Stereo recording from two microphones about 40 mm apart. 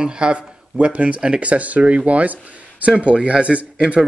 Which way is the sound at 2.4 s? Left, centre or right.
Right.